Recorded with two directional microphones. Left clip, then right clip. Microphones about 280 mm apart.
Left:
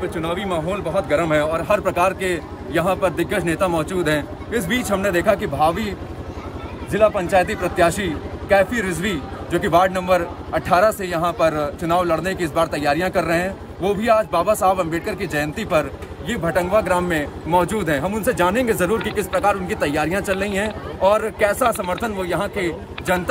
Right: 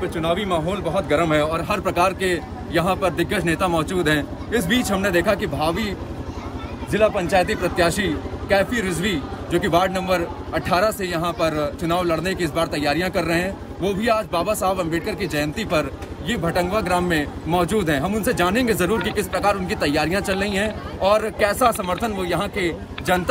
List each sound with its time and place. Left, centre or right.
0.0 s a man's voice: centre